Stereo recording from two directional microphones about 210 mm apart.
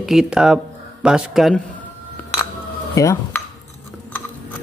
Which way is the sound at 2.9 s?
15° left (ahead or behind).